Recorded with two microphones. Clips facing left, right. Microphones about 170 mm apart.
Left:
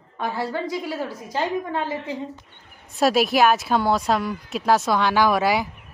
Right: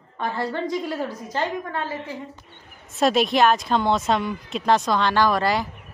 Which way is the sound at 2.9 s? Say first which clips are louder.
Left 1 dB; 5° left (ahead or behind).